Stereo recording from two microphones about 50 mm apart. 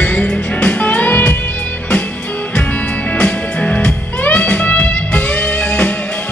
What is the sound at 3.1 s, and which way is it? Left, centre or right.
Music, left.